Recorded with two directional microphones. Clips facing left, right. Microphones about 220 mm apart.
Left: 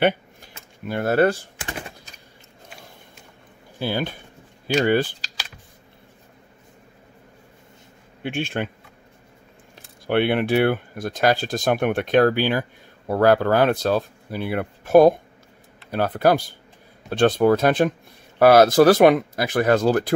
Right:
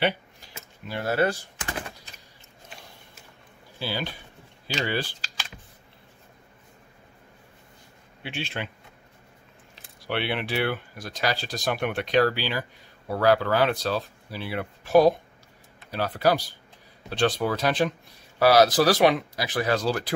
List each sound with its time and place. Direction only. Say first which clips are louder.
0.0 s a sound: left 6 dB; 50° left (ahead or behind)
3.8 s speech: left 6 dB; 50° left (ahead or behind)
8.2 s speech: left 8 dB; 50° left (ahead or behind)
10.0 s speech: left 9 dB; 50° left (ahead or behind)